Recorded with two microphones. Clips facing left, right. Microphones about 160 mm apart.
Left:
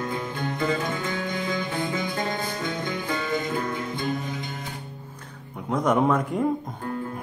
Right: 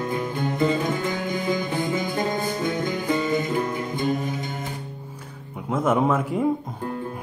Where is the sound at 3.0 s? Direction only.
25° right (ahead or behind).